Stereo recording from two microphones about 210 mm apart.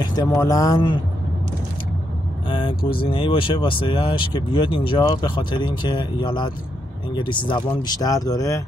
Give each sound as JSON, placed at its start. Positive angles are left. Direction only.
{"t": 0.0, "sound": "speech", "side_deg": 20}
{"t": 2.4, "sound": "vehicle", "side_deg": 25}
{"t": 3.1, "sound": "speech", "side_deg": 25}